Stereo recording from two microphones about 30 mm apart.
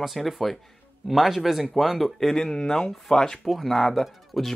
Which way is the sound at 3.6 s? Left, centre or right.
Centre.